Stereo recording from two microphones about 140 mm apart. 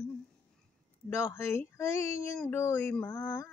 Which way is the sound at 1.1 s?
20° left (ahead or behind).